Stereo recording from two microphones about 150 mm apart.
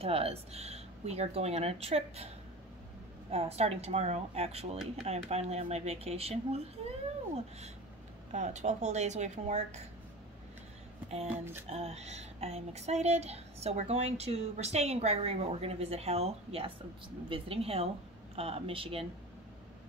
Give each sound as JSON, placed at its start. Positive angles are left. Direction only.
{"t": 0.0, "sound": "a woman's voice", "side_deg": -40}
{"t": 3.3, "sound": "a woman's voice", "side_deg": -45}
{"t": 8.3, "sound": "a woman's voice", "side_deg": -50}
{"t": 11.7, "sound": "a woman's voice", "side_deg": -45}